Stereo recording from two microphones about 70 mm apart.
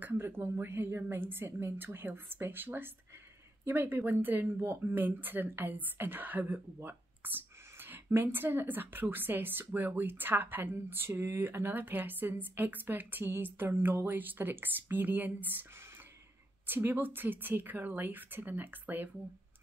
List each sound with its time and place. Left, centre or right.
0.0 s a woman's voice: right
16.6 s speech: right